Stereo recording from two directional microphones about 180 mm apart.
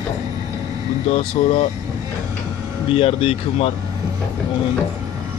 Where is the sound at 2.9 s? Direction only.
30° left (ahead or behind).